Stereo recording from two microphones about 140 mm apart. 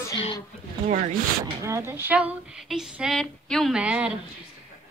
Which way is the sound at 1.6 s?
20° right (ahead or behind).